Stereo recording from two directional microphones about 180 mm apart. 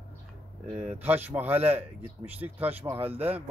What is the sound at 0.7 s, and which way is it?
Speech, 10° right (ahead or behind).